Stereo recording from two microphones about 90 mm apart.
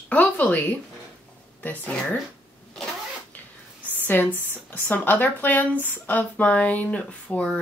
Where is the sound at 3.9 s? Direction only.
20° left (ahead or behind).